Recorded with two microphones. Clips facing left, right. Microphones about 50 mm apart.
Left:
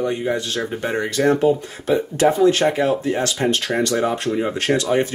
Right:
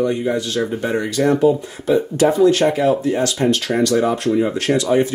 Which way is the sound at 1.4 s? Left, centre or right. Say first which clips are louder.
Right 2 dB; left.